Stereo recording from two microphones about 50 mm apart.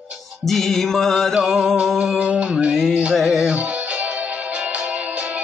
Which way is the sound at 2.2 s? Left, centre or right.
Right.